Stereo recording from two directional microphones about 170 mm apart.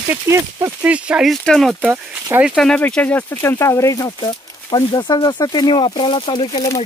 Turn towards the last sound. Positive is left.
turn(degrees=25)  # may be behind; listen again after turning